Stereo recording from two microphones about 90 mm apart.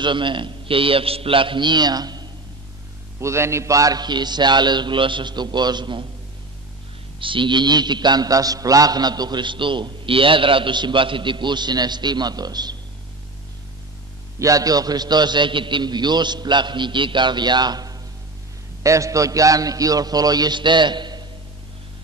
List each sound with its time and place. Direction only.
0.0 s mantra: 65° right (ahead or behind); by 2.2 s 50° right (ahead or behind)
3.2 s mantra: 30° right (ahead or behind); by 6.0 s 60° right (ahead or behind)
7.2 s mantra: 70° right (ahead or behind); by 12.7 s 50° right (ahead or behind)
14.4 s a man's voice: 40° right (ahead or behind)
18.8 s a man's voice: 35° right (ahead or behind); by 21.3 s 55° right (ahead or behind)